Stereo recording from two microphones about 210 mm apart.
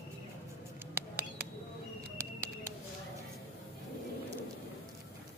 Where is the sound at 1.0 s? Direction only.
10° right (ahead or behind).